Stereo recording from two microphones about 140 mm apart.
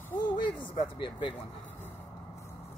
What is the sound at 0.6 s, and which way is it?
Speech, 35° left (ahead or behind).